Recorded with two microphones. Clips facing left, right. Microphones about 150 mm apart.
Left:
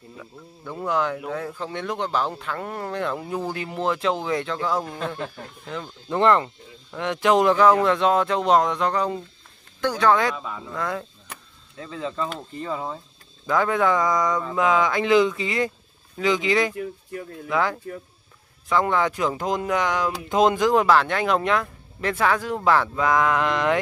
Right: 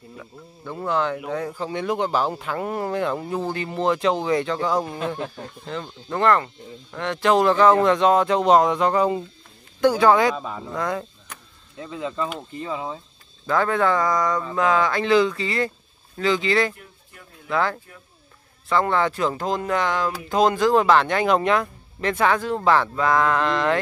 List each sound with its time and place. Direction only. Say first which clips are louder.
0.2 s a man's voice: even; centre (ahead or behind)
0.8 s speech: right 1 dB; 10° left (ahead or behind)
1.1 s a man's voice: right 2 dB; centre (ahead or behind)
5.7 s a man's voice: right 1 dB; 5° left (ahead or behind)
6.1 s a man's voice: left 1 dB; 20° left (ahead or behind); by 10.3 s 5° right (ahead or behind)
10.3 s speech: right 3 dB; 20° right (ahead or behind)
10.8 s a man's voice: right 2 dB; centre (ahead or behind)
11.8 s a man's voice: right 1 dB; 15° right (ahead or behind)
13.5 s speech: even; 10° left (ahead or behind)
14.1 s a man's voice: even; centre (ahead or behind)
14.5 s speech: even; 15° left (ahead or behind)